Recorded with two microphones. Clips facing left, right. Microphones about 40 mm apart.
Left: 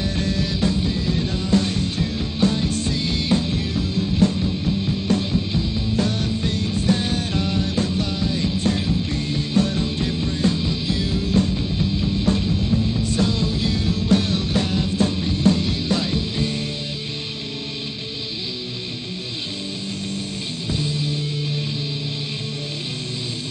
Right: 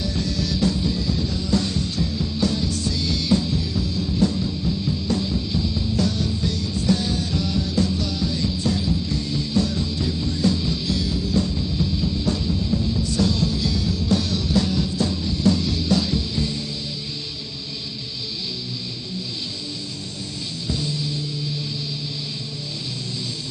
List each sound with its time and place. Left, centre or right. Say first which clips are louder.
0.0 s music: left 2 dB; left
5.9 s music: left 1 dB; left
13.1 s music: right 1 dB; left